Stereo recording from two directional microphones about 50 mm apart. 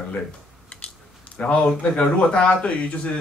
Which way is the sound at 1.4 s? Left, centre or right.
Left.